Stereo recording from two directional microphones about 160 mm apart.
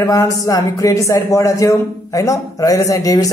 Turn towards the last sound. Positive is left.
turn(degrees=20)  # may be behind; listen again after turning